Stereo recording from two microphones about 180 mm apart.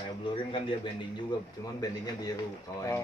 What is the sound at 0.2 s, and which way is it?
A man's voice, 30° left (ahead or behind).